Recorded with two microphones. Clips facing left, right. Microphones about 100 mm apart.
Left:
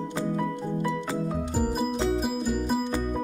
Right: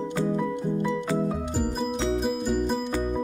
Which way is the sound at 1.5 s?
5° left (ahead or behind).